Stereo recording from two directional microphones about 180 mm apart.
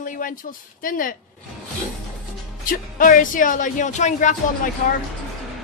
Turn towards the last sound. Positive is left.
turn(degrees=45)  # may be behind; listen again after turning